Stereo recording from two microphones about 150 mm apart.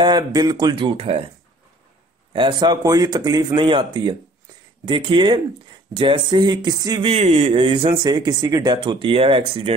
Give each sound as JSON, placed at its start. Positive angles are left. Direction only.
{"t": 0.0, "sound": "speech", "side_deg": -30}
{"t": 2.3, "sound": "speech", "side_deg": -30}
{"t": 7.0, "sound": "speech", "side_deg": -40}